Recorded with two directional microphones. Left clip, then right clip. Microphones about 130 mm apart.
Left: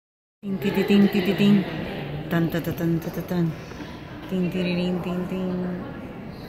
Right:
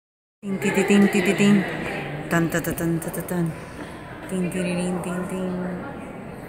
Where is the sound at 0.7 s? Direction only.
10° right (ahead or behind).